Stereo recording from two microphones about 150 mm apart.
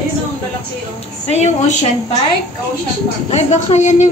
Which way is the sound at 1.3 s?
50° left (ahead or behind).